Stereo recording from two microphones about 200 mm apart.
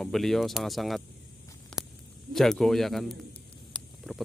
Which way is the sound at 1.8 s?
5° right (ahead or behind).